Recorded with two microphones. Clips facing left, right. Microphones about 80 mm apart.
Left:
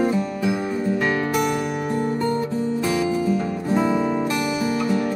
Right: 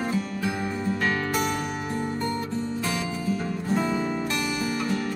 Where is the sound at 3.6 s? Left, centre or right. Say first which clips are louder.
Left 5 dB; centre.